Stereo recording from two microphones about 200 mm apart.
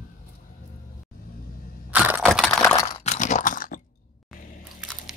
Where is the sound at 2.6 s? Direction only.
10° left (ahead or behind).